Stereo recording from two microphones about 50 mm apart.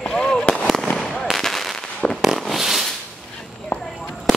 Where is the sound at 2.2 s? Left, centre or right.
Centre.